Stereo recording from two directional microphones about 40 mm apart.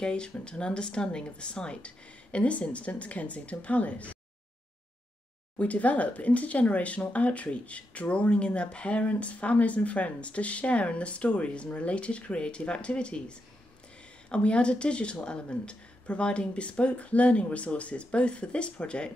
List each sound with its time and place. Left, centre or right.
0.0 s speech: left
5.6 s speech: left